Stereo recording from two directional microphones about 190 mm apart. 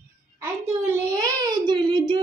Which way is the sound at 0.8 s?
15° right (ahead or behind).